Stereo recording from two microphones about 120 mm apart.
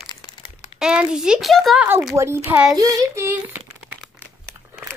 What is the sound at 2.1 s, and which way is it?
Speech, 20° right (ahead or behind).